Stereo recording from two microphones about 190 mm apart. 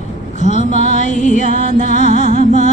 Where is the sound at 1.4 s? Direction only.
40° left (ahead or behind).